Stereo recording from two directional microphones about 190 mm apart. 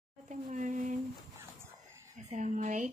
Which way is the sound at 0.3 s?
40° right (ahead or behind).